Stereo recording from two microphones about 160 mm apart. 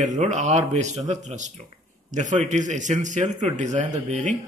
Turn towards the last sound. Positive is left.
turn(degrees=-50)  # may be behind; listen again after turning